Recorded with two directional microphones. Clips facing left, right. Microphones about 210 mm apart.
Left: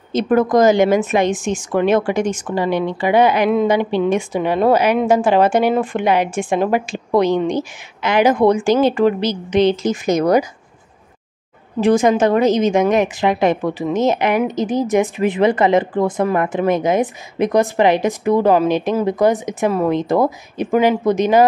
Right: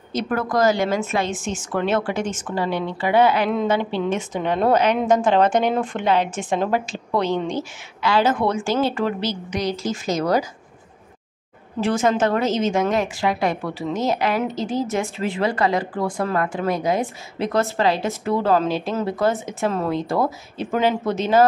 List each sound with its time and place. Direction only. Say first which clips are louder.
0.1 s speech: left 8 dB; 20° left (ahead or behind)
11.8 s speech: left 6 dB; 15° left (ahead or behind)